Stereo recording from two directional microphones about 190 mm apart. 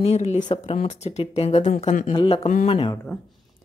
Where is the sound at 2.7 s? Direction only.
25° left (ahead or behind).